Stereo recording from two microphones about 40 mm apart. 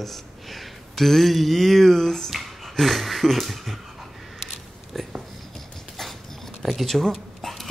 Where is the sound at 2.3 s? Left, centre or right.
Centre.